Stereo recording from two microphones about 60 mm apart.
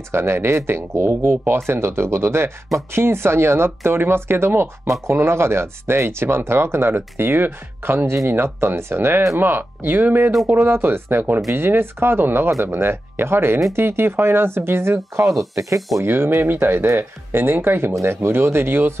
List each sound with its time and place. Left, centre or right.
0.1 s speech: right